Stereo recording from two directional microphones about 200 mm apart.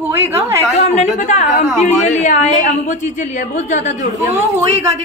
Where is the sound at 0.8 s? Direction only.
35° left (ahead or behind).